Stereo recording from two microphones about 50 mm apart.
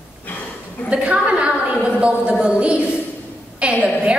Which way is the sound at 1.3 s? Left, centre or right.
Right.